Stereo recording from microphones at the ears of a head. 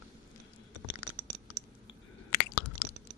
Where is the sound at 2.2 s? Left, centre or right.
Left.